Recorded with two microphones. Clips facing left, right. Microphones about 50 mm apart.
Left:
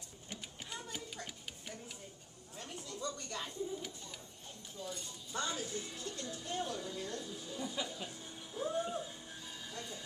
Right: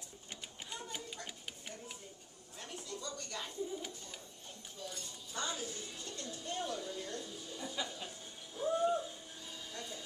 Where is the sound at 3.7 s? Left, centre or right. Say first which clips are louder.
Even; centre.